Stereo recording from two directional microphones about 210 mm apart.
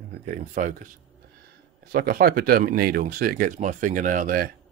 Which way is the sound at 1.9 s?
45° right (ahead or behind).